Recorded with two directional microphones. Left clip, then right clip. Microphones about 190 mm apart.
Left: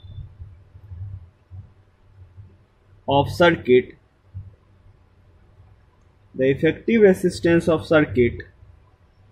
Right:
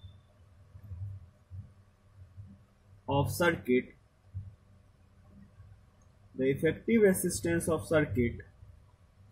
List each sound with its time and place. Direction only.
3.1 s speech: 35° left (ahead or behind)
6.3 s speech: 35° left (ahead or behind)